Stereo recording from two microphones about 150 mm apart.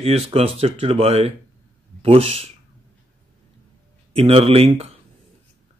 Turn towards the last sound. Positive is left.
turn(degrees=-40)  # may be behind; listen again after turning